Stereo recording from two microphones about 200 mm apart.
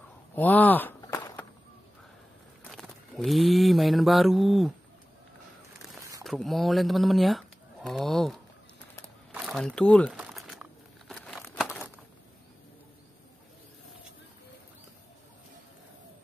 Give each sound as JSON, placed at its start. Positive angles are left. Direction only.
{"t": 0.4, "sound": "walk", "side_deg": 10}
{"t": 2.7, "sound": "mantra", "side_deg": 0}
{"t": 5.9, "sound": "a sound", "side_deg": -15}
{"t": 6.2, "sound": "speech", "side_deg": 0}
{"t": 10.1, "sound": "crumpling", "side_deg": -5}